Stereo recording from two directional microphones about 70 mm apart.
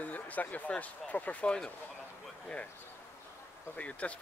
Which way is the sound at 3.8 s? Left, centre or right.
Centre.